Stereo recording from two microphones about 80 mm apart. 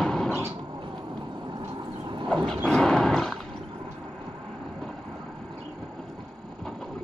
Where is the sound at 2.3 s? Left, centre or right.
Centre.